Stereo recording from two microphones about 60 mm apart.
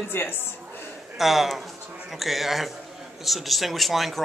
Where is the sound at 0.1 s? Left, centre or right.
Left.